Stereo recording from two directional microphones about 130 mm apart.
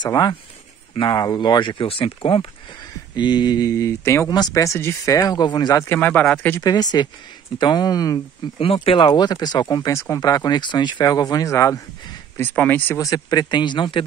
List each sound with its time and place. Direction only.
0.0 s speech: 30° left (ahead or behind)
5.9 s speech: 10° left (ahead or behind)
6.6 s speech: 30° left (ahead or behind)
8.5 s speech: 45° left (ahead or behind); by 11.8 s 25° left (ahead or behind)
12.4 s speech: 15° left (ahead or behind)
13.0 s speech: 30° left (ahead or behind)